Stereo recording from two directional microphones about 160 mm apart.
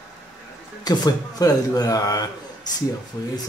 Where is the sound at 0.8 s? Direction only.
25° left (ahead or behind).